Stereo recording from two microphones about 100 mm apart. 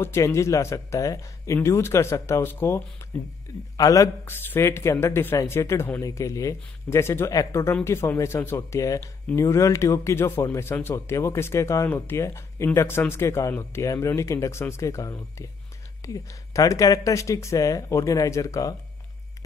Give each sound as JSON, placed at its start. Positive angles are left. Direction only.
{"t": 0.0, "sound": "speech", "side_deg": 25}
{"t": 3.7, "sound": "speech", "side_deg": 35}
{"t": 4.3, "sound": "speech", "side_deg": 20}